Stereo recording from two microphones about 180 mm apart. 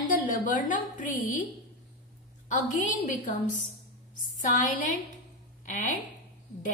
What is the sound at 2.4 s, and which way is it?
A woman's voice, 45° left (ahead or behind).